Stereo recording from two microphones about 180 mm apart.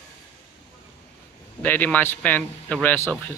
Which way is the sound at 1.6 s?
10° left (ahead or behind).